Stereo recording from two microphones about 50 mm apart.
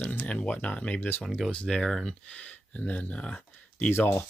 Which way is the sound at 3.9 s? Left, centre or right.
Left.